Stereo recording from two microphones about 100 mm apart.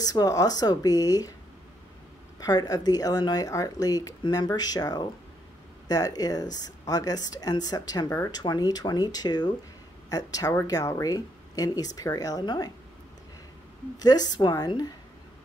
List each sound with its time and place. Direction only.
0.0 s speech: 40° left (ahead or behind)
2.4 s speech: 40° left (ahead or behind)
13.9 s speech: 40° left (ahead or behind)